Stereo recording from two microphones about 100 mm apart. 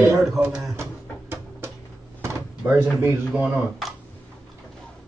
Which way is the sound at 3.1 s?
Centre (ahead or behind).